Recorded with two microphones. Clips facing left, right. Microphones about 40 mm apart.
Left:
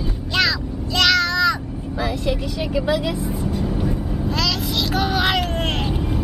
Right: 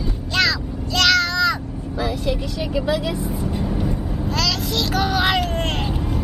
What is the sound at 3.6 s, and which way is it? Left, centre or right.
Vehicle, centre.